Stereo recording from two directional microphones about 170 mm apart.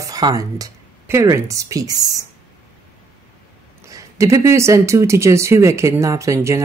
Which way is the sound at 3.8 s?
20° right (ahead or behind).